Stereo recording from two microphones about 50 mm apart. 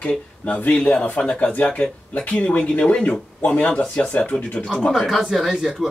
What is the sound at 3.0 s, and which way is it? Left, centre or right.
Speech, left.